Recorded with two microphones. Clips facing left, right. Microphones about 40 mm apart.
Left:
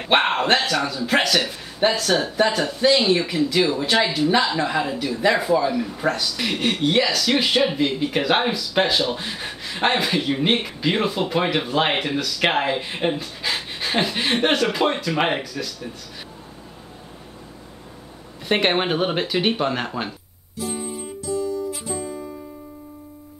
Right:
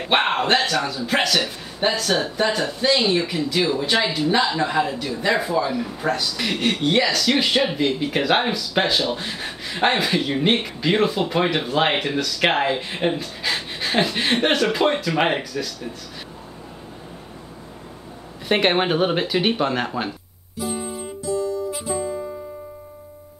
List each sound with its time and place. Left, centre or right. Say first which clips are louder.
0.0 s speech: left 1 dB; centre
18.5 s a sound: right 1 dB; centre
21.7 s music: right 4 dB; centre